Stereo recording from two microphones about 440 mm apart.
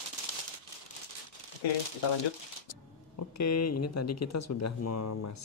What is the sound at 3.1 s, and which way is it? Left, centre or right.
Speech, left.